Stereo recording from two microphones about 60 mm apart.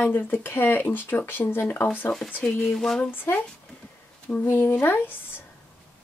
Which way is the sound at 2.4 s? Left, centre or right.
Centre.